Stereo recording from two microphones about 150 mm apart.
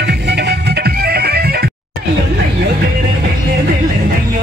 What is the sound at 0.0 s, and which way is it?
Music, 90° right.